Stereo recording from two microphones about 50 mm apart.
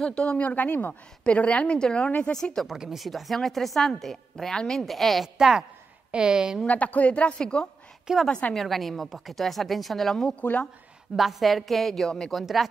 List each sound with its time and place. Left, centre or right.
0.0 s a woman's voice: centre
2.3 s speech: centre
3.0 s a woman's voice: centre
6.7 s a woman's voice: left
8.3 s a woman's voice: left
8.5 s a woman's voice: centre